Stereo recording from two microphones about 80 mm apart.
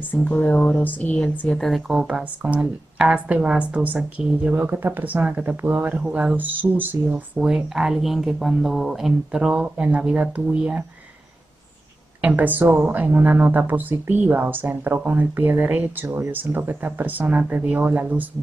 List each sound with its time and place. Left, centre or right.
0.1 s a woman's voice: centre
1.5 s speech: centre
2.0 s a woman's voice: centre
4.6 s speech: right; by 6.3 s centre
6.3 s speech: right
7.3 s a woman's voice: centre
12.2 s speech: right